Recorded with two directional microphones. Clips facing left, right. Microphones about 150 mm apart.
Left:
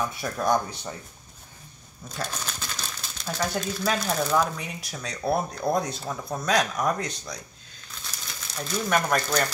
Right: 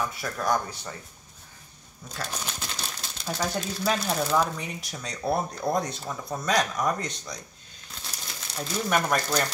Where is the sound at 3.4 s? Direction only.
5° right (ahead or behind).